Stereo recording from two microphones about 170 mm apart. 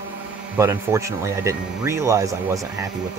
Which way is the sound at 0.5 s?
15° right (ahead or behind).